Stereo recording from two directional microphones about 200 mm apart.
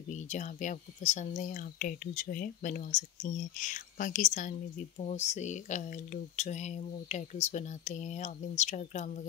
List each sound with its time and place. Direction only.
0.1 s speech: 35° left (ahead or behind)